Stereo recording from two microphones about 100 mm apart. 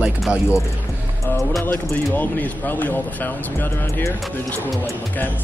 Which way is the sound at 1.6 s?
20° left (ahead or behind).